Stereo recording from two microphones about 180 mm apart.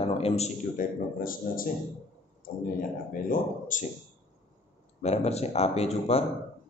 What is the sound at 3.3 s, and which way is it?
Speech, 45° left (ahead or behind).